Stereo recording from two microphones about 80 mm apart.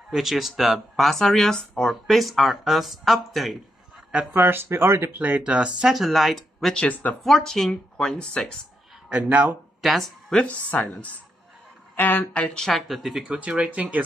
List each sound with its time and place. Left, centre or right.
0.1 s speech: centre
4.1 s speech: centre
5.2 s speech: centre
6.8 s speech: centre
7.2 s speech: centre
9.1 s speech: centre
9.8 s speech: centre
10.4 s speech: centre
12.4 s speech: centre